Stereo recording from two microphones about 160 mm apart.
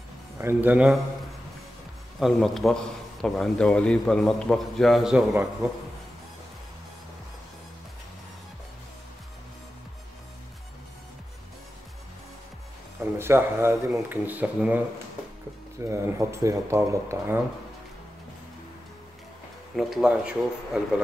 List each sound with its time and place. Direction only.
0.4 s speech: 15° right (ahead or behind)
2.1 s a man's voice: centre (ahead or behind)
13.2 s speech: 15° right (ahead or behind)
15.8 s speech: 15° right (ahead or behind)
19.7 s a man's voice: centre (ahead or behind)